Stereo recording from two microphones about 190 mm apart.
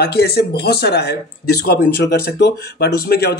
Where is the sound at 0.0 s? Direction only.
60° left (ahead or behind).